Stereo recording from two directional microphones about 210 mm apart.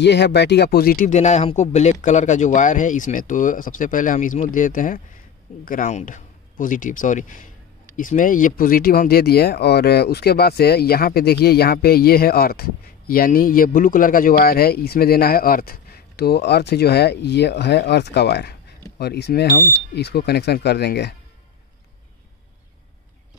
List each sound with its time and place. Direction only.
0.0 s a man's voice: 55° left (ahead or behind)